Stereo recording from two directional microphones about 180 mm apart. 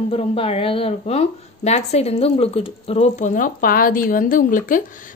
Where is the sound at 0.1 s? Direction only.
35° left (ahead or behind).